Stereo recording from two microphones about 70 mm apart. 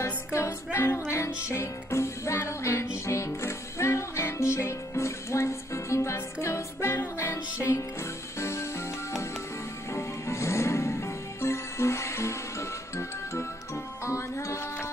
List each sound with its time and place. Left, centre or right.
0.0 s music: left
8.4 s music: left
9.9 s music: left